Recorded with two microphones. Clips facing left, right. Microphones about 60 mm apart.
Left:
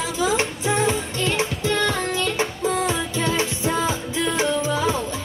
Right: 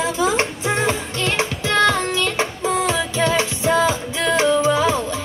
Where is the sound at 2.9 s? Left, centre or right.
Right.